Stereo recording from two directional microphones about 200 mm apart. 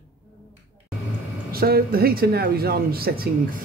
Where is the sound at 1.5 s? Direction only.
50° right (ahead or behind).